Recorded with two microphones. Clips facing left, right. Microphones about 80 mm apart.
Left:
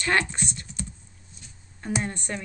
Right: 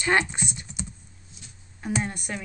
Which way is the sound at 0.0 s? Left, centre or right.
Centre.